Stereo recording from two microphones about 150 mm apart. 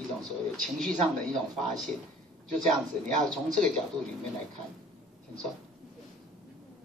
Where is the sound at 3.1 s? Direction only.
55° right (ahead or behind).